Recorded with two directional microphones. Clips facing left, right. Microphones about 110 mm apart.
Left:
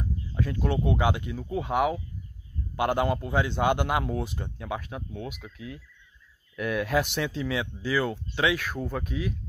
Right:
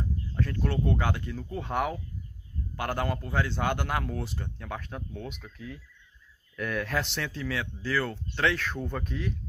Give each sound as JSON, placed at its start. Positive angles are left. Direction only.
{"t": 0.3, "sound": "speech", "side_deg": 15}